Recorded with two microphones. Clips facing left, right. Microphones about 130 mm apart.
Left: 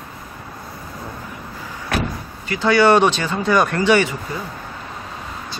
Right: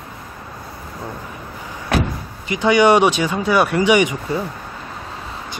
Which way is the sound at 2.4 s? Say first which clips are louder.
Right 1 dB; 15° right (ahead or behind).